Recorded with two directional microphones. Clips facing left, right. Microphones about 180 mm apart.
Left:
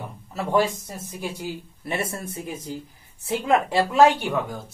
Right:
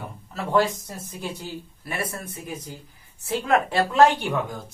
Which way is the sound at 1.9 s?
25° left (ahead or behind).